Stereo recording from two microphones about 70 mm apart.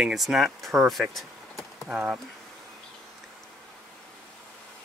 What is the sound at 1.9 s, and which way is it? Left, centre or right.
Speech, centre.